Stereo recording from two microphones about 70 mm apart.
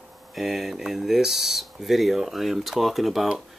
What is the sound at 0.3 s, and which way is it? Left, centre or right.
Speech, centre.